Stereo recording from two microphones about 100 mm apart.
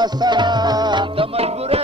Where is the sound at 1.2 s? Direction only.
75° right (ahead or behind).